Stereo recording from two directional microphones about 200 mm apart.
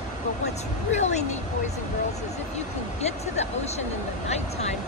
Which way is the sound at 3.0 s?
35° left (ahead or behind).